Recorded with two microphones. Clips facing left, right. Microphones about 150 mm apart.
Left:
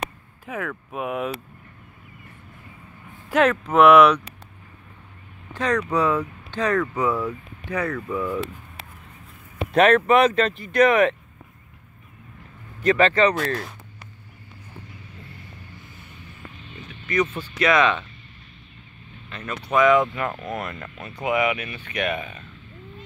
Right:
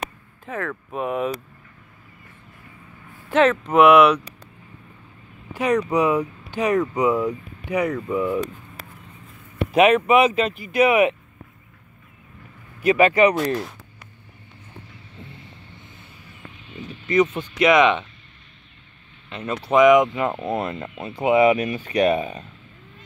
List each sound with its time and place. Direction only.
0.5 s speech: 5° left (ahead or behind)
3.3 s speech: 10° left (ahead or behind)
5.5 s speech: 15° right (ahead or behind)
9.7 s speech: 5° right (ahead or behind)
12.8 s speech: 15° right (ahead or behind)
17.1 s speech: 20° right (ahead or behind)
19.2 s speech: 25° right (ahead or behind)